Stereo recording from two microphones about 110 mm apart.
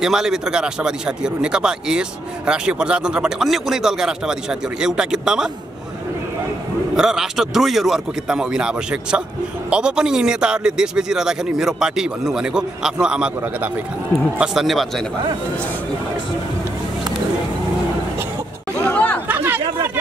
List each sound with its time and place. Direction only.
0.0 s speech: 5° right (ahead or behind)
7.0 s a man's voice: 5° right (ahead or behind)
14.4 s a man's voice: 5° right (ahead or behind)
18.9 s chatter: 10° left (ahead or behind)
19.2 s chatter: 20° right (ahead or behind)